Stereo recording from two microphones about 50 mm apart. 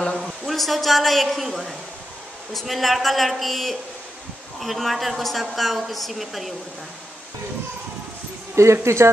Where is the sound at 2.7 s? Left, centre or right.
Centre.